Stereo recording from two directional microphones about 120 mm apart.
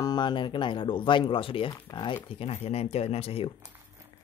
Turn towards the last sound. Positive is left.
turn(degrees=55)  # may be behind; listen again after turning